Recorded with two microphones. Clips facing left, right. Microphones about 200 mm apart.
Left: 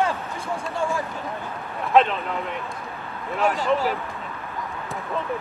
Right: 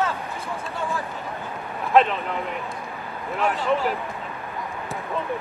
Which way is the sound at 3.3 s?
Centre (ahead or behind).